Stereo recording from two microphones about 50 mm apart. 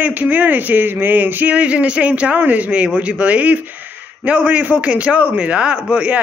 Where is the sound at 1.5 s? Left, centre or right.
Right.